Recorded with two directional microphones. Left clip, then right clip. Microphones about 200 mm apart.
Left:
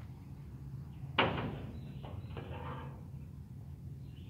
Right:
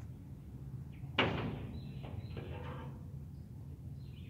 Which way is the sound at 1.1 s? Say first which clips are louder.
Left 2 dB; 25° left (ahead or behind).